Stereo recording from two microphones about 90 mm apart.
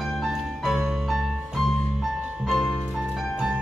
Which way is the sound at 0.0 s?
Centre (ahead or behind).